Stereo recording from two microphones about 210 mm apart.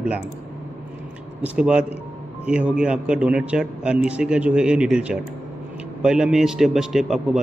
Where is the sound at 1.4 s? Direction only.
5° right (ahead or behind).